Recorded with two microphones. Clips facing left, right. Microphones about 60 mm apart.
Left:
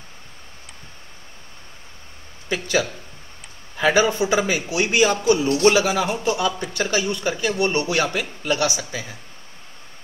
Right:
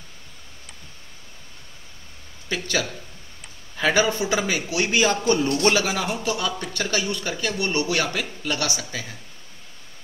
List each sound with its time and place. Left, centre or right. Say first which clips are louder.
2.5 s a man's voice: left 4 dB; centre
6.1 s a man's voice: left 4 dB; left